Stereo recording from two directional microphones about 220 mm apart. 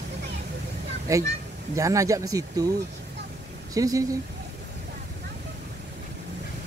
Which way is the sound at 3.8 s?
15° right (ahead or behind).